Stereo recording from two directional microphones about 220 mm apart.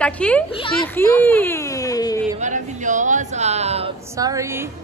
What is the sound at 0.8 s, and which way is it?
A woman's voice, 10° left (ahead or behind).